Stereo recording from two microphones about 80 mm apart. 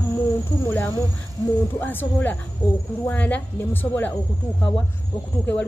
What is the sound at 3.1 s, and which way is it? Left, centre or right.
Speech, centre.